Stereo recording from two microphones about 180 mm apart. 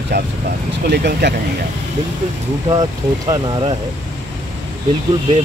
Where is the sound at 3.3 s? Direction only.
25° right (ahead or behind).